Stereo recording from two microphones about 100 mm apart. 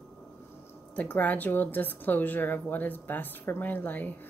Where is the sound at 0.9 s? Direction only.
15° left (ahead or behind).